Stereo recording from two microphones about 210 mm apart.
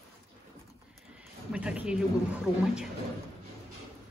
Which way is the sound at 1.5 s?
5° right (ahead or behind).